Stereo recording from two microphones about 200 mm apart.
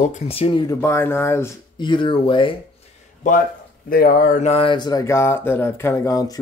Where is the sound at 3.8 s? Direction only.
45° left (ahead or behind).